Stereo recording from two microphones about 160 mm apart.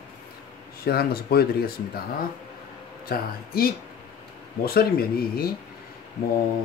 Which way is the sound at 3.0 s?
65° left (ahead or behind).